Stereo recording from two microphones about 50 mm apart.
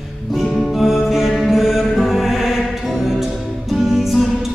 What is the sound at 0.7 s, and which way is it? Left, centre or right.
Music, centre.